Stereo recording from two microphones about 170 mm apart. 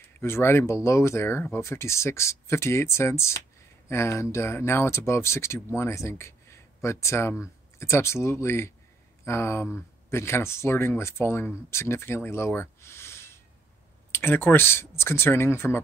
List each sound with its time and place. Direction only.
0.0 s speech: 15° left (ahead or behind)